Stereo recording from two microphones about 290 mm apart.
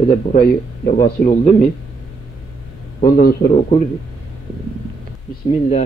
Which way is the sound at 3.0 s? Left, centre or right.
Left.